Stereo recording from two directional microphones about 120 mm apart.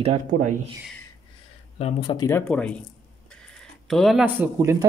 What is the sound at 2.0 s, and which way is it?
Speech, 35° left (ahead or behind).